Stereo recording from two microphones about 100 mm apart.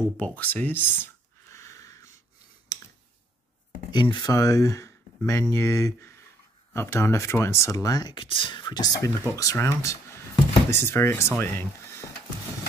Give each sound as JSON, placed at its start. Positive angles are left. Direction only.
{"t": 0.2, "sound": "a sound", "side_deg": 15}
{"t": 2.7, "sound": "clicking", "side_deg": 35}
{"t": 3.9, "sound": "speech", "side_deg": 50}
{"t": 4.3, "sound": "speech", "side_deg": 35}